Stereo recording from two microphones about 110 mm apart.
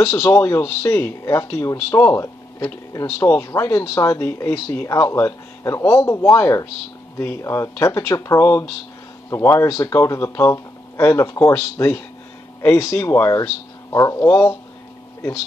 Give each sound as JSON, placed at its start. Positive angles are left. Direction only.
{"t": 0.0, "sound": "speech", "side_deg": 25}